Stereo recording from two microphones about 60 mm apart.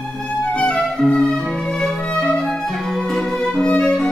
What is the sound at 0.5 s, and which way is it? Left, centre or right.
Music, centre.